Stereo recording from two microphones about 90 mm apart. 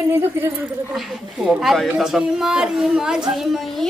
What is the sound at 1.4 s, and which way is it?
A child's voice, centre (ahead or behind).